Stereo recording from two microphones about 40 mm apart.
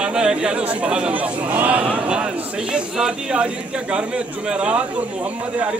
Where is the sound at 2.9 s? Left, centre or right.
Centre.